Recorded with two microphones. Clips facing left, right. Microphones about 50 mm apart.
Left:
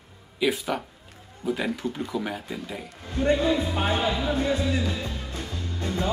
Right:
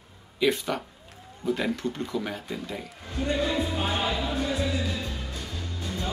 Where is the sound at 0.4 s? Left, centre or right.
Centre.